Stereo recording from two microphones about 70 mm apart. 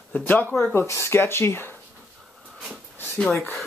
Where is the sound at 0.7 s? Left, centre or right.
Left.